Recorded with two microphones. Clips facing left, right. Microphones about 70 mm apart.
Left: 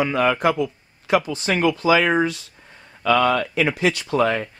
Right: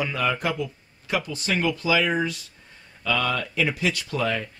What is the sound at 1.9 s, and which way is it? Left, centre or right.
Speech, left.